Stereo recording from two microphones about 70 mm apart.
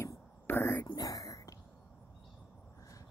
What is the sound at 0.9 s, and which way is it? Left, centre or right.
Whispering, left.